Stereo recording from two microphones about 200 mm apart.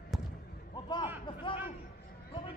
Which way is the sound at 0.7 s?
20° left (ahead or behind).